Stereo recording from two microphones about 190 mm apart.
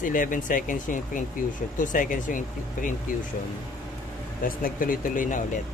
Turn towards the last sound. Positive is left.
turn(degrees=45)  # may be behind; listen again after turning